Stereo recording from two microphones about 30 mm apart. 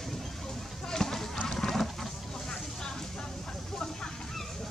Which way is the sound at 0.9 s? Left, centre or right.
Centre.